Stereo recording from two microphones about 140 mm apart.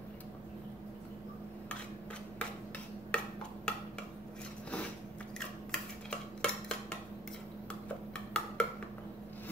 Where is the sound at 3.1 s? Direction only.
5° left (ahead or behind).